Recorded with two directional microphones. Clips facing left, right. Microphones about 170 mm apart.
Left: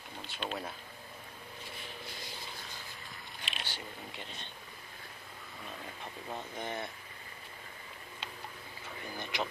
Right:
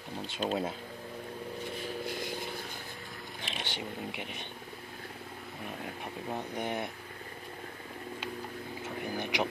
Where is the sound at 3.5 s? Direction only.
20° right (ahead or behind).